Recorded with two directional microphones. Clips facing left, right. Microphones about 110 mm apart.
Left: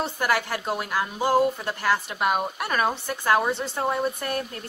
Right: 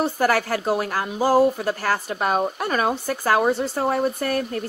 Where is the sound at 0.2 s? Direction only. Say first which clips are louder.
Right 3 dB; 40° right (ahead or behind).